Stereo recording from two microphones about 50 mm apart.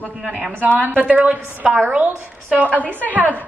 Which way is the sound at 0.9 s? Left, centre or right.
Right.